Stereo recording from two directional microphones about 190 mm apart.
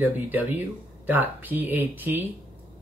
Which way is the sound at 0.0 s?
10° right (ahead or behind).